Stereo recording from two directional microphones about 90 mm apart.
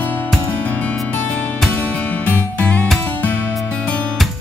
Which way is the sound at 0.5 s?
20° left (ahead or behind).